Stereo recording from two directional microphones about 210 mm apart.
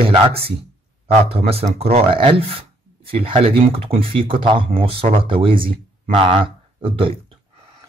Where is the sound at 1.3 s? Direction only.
30° right (ahead or behind).